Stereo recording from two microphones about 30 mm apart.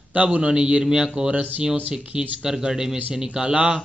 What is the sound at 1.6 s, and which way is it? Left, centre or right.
Speech, right.